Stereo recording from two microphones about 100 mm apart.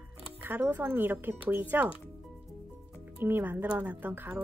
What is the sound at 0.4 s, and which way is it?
Speech, 20° right (ahead or behind).